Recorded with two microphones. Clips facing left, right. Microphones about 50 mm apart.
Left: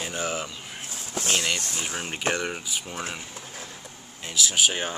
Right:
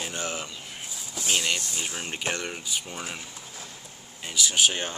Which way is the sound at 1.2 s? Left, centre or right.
Left.